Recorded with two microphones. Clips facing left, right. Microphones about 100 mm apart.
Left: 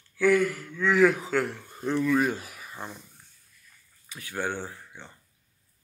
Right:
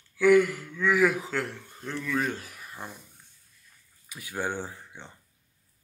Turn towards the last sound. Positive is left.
turn(degrees=-15)  # may be behind; listen again after turning